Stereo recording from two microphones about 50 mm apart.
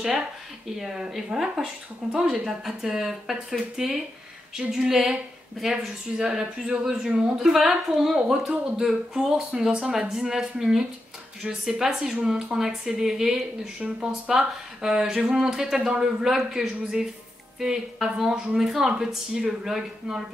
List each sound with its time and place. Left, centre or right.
0.7 s a woman's voice: centre